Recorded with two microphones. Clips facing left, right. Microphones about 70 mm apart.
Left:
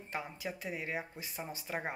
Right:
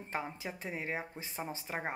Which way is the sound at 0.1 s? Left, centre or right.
Right.